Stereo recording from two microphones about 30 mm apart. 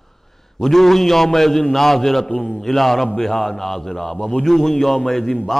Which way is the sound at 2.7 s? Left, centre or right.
Centre.